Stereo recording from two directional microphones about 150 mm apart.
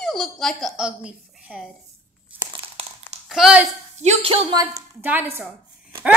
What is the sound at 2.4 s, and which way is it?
Crumpling, 35° right (ahead or behind).